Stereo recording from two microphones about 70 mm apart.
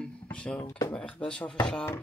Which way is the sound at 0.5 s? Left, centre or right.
Left.